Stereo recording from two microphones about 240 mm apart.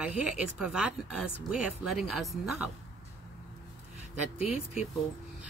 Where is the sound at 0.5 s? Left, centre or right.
Centre.